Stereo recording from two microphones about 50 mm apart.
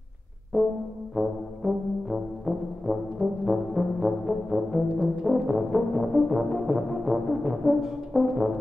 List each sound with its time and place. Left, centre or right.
0.5 s brass instrument: centre
4.8 s brass instrument: right
5.6 s brass instrument: centre